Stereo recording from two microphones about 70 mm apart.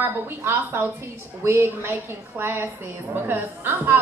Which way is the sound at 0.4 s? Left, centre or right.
Right.